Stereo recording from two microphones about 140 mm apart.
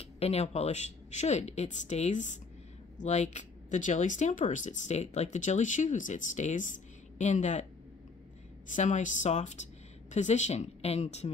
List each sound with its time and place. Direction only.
0.0 s speech: 45° left (ahead or behind)
8.6 s speech: 60° left (ahead or behind)